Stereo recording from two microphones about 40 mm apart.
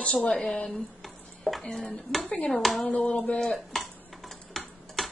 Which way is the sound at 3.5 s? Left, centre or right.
Centre.